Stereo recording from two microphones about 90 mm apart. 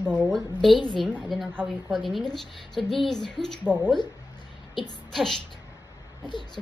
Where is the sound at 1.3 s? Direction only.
Centre (ahead or behind).